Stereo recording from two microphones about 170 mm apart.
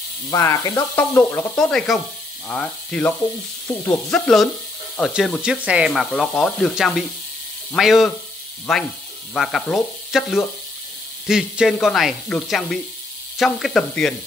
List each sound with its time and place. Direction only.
0.3 s speech: 20° left (ahead or behind); by 14.1 s 5° left (ahead or behind)